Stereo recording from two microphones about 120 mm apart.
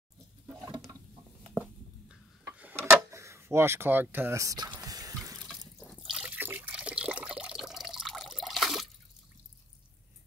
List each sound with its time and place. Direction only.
2.4 s tick-tock: 15° right (ahead or behind)
3.0 s speech: 25° right (ahead or behind)
4.7 s water: 30° right (ahead or behind)
5.8 s water: centre (ahead or behind)